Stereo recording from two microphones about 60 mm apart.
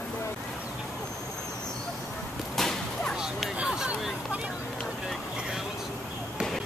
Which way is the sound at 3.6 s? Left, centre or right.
Centre.